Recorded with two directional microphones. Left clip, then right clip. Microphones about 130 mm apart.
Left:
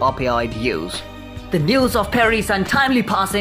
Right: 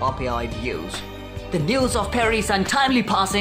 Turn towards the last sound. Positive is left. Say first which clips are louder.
# left 2 dB
turn(degrees=10)  # may be behind; listen again after turning